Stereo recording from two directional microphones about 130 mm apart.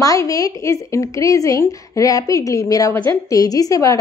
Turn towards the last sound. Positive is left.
turn(degrees=25)  # may be behind; listen again after turning